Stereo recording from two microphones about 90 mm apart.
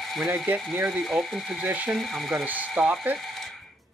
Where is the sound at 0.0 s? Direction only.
Centre (ahead or behind).